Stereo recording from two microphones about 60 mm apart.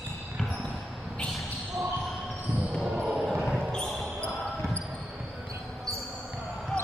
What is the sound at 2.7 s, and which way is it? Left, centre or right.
Basketball bounce, centre.